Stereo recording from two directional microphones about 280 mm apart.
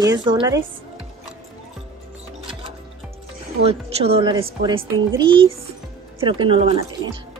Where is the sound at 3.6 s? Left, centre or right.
Right.